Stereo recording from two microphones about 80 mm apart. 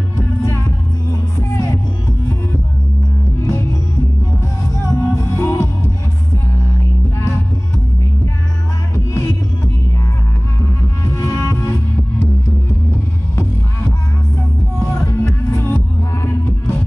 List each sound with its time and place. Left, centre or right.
0.4 s music: left
4.9 s music: left
8.9 s music: left
11.1 s music: left
15.0 s music: left